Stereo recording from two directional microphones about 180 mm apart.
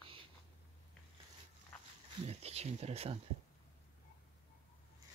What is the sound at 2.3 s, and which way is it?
Speech, 35° right (ahead or behind).